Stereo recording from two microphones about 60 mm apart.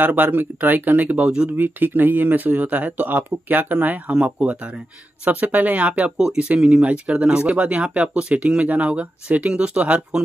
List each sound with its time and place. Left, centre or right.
0.0 s speech: right
4.1 s speech: centre
6.1 s speech: centre